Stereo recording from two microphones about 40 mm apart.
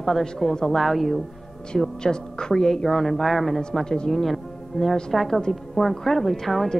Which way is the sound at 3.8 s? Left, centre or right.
Centre.